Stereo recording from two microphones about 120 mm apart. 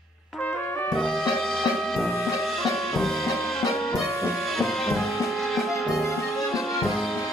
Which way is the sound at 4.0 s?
25° left (ahead or behind).